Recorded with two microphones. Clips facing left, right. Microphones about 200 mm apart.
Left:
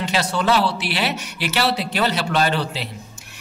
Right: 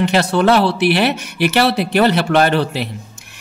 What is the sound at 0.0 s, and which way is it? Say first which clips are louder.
Speech: right 7 dB; 60° right (ahead or behind).